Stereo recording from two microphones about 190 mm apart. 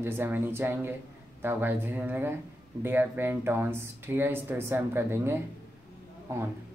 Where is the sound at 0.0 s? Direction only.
10° right (ahead or behind).